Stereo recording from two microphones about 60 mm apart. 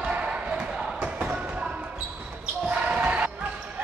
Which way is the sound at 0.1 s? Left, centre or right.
Centre.